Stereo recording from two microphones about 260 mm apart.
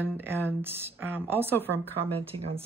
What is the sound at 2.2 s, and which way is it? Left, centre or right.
Speech, right.